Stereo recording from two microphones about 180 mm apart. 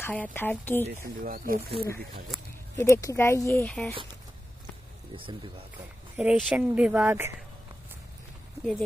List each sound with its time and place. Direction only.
0.0 s speech: 10° left (ahead or behind)
0.8 s speech: 55° right (ahead or behind)
2.8 s speech: 15° left (ahead or behind)
3.6 s speech: 5° left (ahead or behind)
5.1 s speech: 30° right (ahead or behind)
6.1 s speech: centre (ahead or behind)